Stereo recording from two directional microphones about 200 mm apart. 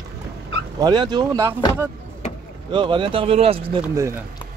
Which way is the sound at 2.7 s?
25° right (ahead or behind).